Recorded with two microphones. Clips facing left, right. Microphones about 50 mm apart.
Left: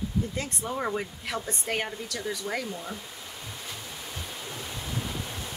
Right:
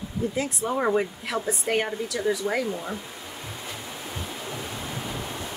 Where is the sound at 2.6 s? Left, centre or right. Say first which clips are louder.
Right 6 dB; centre.